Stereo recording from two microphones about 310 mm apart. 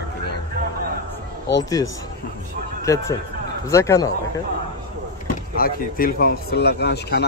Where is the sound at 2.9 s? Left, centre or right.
Centre.